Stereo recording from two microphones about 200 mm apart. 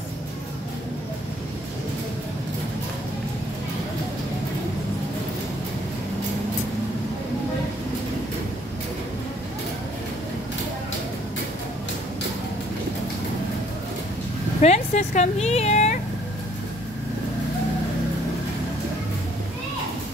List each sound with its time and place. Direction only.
14.6 s speech: 35° left (ahead or behind)